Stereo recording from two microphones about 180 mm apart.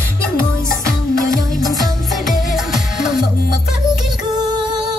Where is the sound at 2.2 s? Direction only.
Centre (ahead or behind).